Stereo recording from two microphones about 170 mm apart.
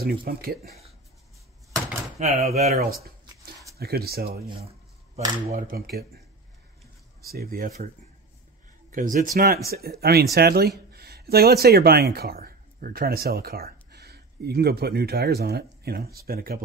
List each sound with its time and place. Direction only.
0.0 s speech: 65° right (ahead or behind)
2.1 s speech: 40° right (ahead or behind)
3.7 s speech: 65° right (ahead or behind)
5.5 s speech: 55° right (ahead or behind)
7.2 s speech: 60° right (ahead or behind)
8.9 s speech: 50° right (ahead or behind)
9.7 s speech: 65° right (ahead or behind)